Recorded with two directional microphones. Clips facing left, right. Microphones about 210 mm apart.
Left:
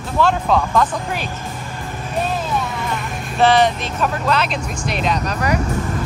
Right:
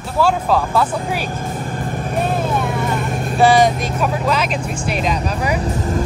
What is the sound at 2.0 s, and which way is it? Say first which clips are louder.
Vehicle: right 2 dB; 55° right (ahead or behind).